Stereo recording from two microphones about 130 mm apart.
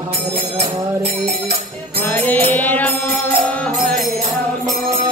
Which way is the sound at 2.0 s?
15° left (ahead or behind).